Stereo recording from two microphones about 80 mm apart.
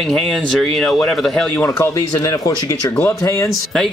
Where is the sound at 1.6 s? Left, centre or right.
Left.